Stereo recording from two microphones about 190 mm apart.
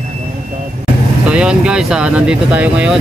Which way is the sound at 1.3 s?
5° right (ahead or behind).